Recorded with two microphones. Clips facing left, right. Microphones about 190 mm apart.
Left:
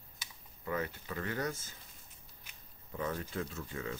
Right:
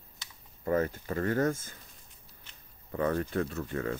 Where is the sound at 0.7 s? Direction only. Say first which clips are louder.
Right 8 dB; 45° right (ahead or behind).